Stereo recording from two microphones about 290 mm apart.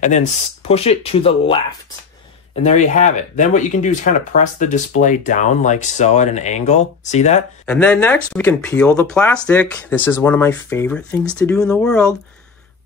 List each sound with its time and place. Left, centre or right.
0.7 s speech: centre
7.6 s speech: centre